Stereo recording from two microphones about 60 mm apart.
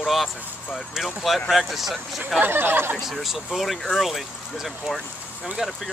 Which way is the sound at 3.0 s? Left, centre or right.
Centre.